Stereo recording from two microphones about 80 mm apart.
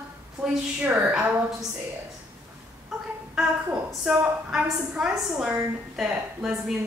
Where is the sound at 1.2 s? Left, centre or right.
Right.